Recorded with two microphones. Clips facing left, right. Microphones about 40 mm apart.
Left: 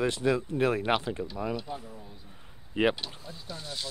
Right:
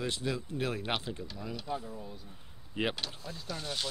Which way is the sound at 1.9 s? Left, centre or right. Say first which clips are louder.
Right 3 dB; centre.